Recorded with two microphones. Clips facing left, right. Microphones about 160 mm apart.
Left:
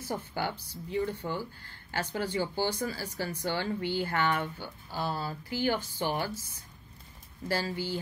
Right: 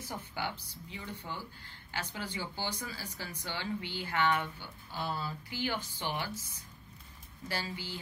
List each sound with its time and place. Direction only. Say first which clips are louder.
0.1 s speech: left 6 dB; 40° left (ahead or behind)
7.4 s speech: left 7 dB; 40° left (ahead or behind)